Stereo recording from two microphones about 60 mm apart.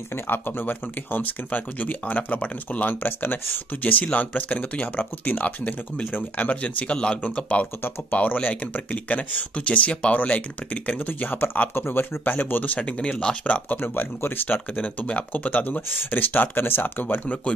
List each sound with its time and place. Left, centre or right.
0.1 s speech: left; by 13.6 s centre
13.7 s speech: left